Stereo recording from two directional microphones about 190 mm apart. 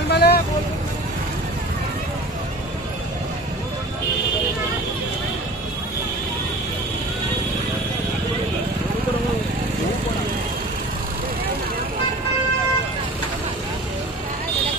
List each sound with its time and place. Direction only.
0.1 s vehicle: 60° left (ahead or behind)